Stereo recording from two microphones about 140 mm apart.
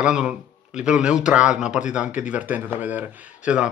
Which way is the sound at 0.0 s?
5° right (ahead or behind).